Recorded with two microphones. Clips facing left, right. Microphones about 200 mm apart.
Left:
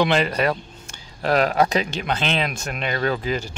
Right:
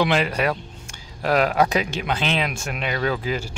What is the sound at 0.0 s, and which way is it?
Speech, 10° right (ahead or behind).